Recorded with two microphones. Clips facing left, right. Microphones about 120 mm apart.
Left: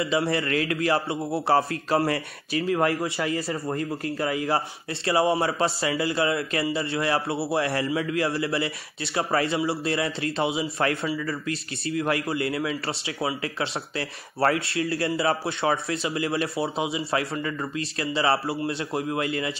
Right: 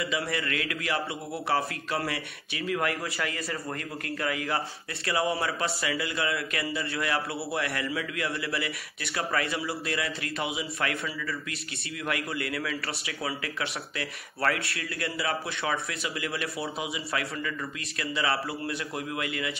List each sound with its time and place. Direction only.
0.0 s a man's voice: 30° left (ahead or behind)